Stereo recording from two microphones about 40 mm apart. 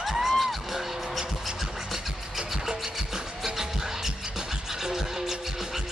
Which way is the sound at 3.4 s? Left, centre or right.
Centre.